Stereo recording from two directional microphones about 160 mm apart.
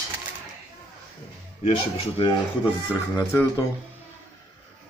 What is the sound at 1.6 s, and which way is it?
Speech, 35° left (ahead or behind).